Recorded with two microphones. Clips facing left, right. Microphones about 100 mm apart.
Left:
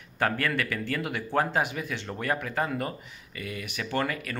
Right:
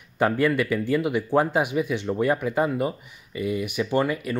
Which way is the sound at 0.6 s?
15° right (ahead or behind).